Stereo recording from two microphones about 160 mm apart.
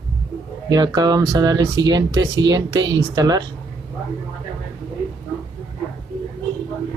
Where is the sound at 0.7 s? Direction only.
25° right (ahead or behind).